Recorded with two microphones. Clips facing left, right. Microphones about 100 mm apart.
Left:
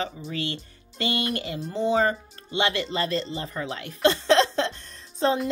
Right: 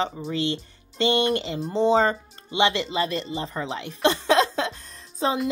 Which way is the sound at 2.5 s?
15° right (ahead or behind).